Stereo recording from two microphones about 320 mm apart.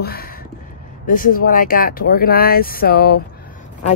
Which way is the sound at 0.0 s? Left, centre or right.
Left.